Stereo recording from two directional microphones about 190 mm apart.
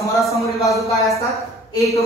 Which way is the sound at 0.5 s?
Centre (ahead or behind).